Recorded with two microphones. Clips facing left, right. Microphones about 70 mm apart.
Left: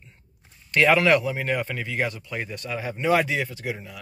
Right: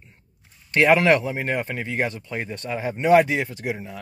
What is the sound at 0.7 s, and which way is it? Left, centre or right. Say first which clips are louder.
Speech: right 2 dB; right.